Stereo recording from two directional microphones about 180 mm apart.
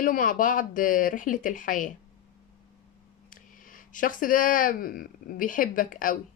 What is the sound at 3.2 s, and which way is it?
Speech, 50° left (ahead or behind).